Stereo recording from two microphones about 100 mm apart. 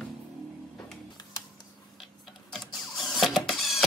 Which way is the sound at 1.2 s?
40° left (ahead or behind).